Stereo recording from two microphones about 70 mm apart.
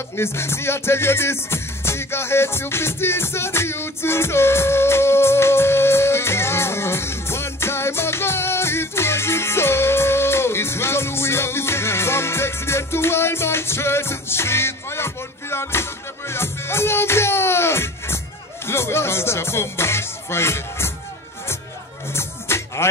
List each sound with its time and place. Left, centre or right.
0.2 s music: left
22.1 s music: left